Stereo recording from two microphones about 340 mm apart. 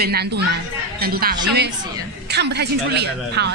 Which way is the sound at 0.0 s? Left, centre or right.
Right.